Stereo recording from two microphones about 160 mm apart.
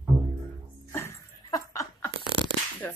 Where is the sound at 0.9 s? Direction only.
20° left (ahead or behind).